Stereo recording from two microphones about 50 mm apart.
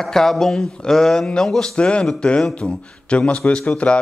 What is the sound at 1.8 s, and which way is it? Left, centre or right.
A man's voice, left.